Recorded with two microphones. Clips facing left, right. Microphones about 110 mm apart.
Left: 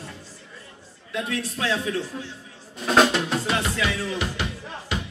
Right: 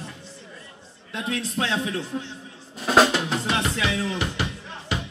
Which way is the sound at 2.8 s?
5° right (ahead or behind).